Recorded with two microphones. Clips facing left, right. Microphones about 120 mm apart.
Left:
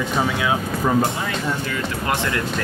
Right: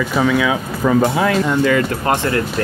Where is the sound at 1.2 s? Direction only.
90° right.